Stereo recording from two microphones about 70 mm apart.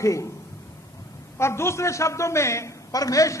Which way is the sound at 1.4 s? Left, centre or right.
Left.